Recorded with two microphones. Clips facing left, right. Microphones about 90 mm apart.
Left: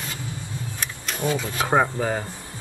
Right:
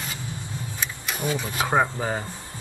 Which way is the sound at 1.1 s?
15° right (ahead or behind).